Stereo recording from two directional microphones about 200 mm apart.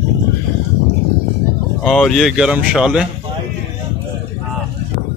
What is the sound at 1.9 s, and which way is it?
Speech, centre (ahead or behind).